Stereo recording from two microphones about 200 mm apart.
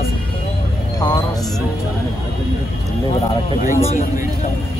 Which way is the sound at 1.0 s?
15° left (ahead or behind).